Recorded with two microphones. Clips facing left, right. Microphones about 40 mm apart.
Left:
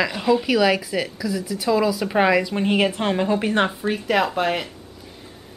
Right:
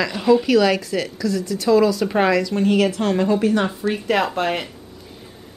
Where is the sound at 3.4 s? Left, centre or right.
Left.